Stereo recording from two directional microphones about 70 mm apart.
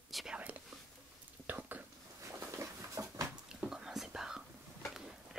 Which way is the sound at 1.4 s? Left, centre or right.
Right.